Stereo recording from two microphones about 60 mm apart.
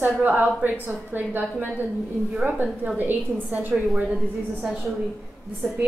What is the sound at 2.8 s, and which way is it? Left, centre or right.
Speech, right.